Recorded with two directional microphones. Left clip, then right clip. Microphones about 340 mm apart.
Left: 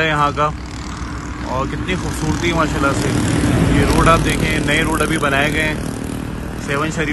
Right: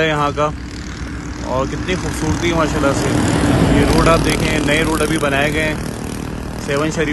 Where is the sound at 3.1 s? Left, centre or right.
Right.